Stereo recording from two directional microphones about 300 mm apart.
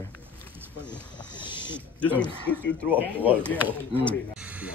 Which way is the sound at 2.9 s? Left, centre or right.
Centre.